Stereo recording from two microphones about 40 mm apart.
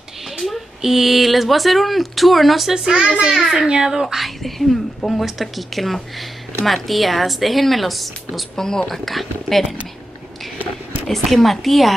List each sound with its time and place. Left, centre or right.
0.4 s speech: centre
2.7 s a child's voice: centre
3.3 s speech: centre
3.6 s speech: centre
4.0 s speech: centre
8.5 s speech: centre
11.1 s speech: centre